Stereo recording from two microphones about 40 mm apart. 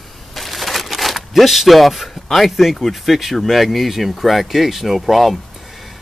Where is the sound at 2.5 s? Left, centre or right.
Centre.